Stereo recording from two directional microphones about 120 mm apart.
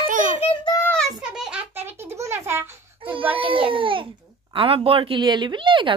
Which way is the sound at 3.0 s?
50° right (ahead or behind).